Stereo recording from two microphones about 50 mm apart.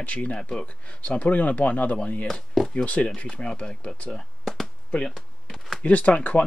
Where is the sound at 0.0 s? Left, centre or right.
Left.